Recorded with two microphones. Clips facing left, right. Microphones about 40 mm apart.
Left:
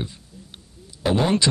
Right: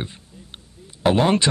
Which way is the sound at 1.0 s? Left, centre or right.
Right.